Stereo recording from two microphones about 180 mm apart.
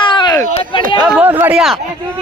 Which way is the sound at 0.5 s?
30° left (ahead or behind).